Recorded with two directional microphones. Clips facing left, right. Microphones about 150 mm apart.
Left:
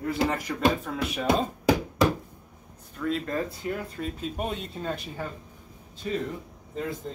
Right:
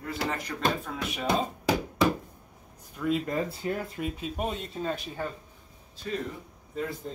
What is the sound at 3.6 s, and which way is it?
Speech, 25° right (ahead or behind).